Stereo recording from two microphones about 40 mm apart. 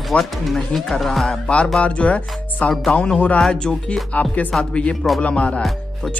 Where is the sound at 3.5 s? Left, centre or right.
Left.